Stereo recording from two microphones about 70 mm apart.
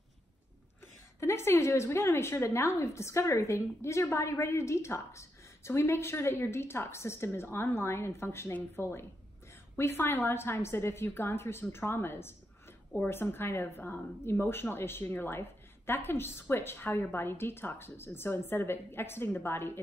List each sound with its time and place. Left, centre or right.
1.2 s a woman's voice: left